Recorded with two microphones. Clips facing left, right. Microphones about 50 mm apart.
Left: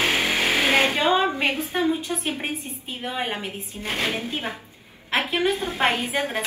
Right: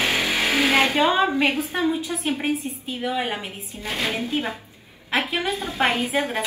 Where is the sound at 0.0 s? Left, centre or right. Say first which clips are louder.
Even; left.